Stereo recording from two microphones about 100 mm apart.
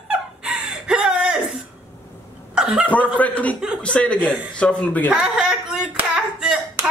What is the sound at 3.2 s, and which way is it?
Speech, 15° left (ahead or behind).